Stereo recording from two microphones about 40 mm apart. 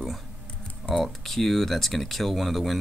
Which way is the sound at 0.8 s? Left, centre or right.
Left.